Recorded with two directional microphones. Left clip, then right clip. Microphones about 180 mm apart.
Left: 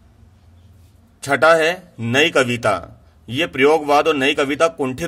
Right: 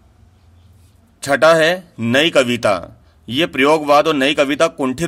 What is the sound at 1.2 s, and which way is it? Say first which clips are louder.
Speech: right 2 dB; 40° right (ahead or behind).